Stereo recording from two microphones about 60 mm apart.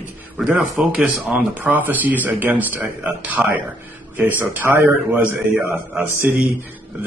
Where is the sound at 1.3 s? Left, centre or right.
Right.